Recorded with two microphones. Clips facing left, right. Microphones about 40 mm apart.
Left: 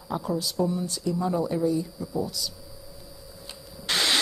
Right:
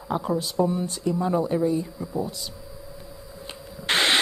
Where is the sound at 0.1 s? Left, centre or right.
Right.